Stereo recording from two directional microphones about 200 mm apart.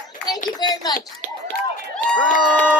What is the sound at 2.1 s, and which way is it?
Speech, 5° left (ahead or behind).